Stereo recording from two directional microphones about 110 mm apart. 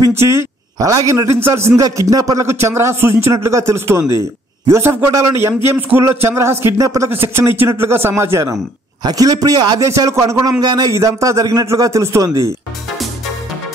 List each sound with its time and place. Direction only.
0.1 s a man's voice: 25° right (ahead or behind)
1.8 s a man's voice: 30° right (ahead or behind)
10.6 s a man's voice: 45° right (ahead or behind)
10.9 s a man's voice: 30° right (ahead or behind)